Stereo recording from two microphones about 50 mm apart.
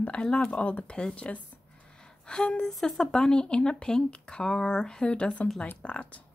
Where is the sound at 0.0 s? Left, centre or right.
Left.